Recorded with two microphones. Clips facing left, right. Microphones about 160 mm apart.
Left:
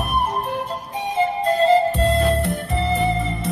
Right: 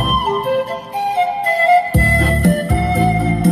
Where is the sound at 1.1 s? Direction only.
70° right (ahead or behind).